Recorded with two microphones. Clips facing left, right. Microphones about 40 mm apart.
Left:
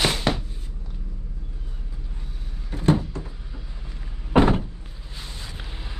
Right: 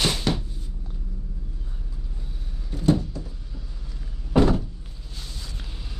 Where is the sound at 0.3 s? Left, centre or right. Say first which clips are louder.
Left 2 dB; left.